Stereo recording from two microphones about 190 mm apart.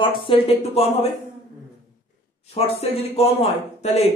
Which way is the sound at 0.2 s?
30° left (ahead or behind).